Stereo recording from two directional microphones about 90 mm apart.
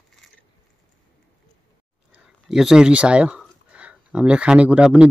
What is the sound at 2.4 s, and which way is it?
Speech, 5° right (ahead or behind).